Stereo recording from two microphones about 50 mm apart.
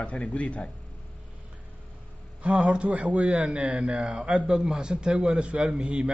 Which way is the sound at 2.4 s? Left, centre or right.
Right.